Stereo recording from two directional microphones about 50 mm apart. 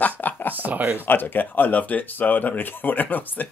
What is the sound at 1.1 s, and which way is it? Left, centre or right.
Speech, left.